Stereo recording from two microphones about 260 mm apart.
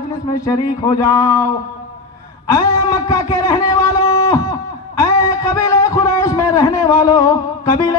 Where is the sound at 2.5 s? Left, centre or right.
Centre.